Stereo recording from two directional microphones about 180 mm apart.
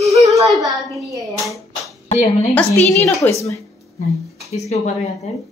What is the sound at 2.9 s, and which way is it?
Speech, 15° left (ahead or behind).